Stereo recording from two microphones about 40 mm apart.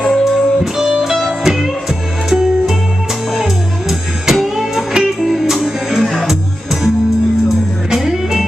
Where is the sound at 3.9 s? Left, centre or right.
Centre.